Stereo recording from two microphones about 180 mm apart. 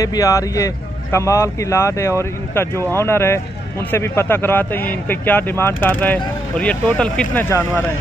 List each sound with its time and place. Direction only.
0.0 s speech: 20° left (ahead or behind)